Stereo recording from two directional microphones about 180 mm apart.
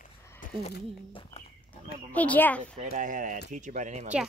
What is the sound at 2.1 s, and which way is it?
Speech, 10° left (ahead or behind).